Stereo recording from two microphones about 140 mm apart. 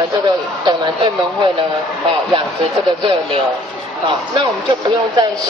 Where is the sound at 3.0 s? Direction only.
35° right (ahead or behind).